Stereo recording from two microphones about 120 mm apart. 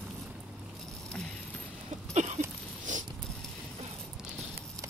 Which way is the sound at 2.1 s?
75° right (ahead or behind).